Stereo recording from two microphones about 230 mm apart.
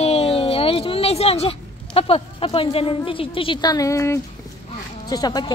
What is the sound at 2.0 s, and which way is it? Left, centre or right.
A woman's voice, left.